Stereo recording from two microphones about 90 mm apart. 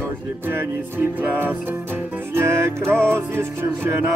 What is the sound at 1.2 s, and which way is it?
Music, 20° right (ahead or behind).